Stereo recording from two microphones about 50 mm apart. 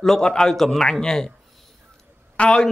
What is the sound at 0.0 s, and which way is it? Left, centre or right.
A man's voice, centre.